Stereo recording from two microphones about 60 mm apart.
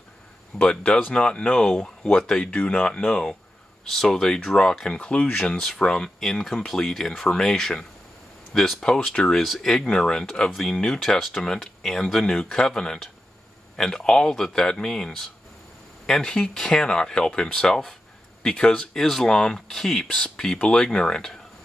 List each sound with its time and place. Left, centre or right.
0.7 s speech: left
1.7 s speech: centre
3.8 s speech: centre
5.5 s speech: centre